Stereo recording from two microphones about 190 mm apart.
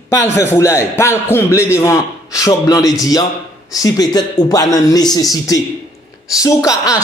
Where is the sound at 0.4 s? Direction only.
15° left (ahead or behind).